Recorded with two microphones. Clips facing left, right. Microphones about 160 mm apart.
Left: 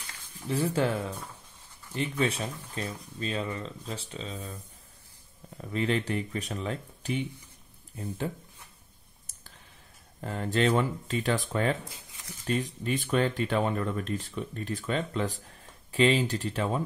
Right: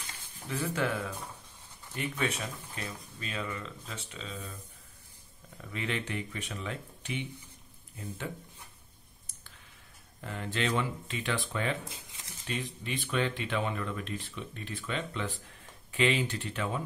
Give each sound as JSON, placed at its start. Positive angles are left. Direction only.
{"t": 0.5, "sound": "speech", "side_deg": 30}
{"t": 5.6, "sound": "speech", "side_deg": 35}
{"t": 10.2, "sound": "speech", "side_deg": 40}